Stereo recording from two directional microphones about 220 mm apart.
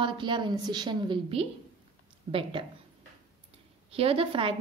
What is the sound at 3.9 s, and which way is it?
Speech, 25° right (ahead or behind).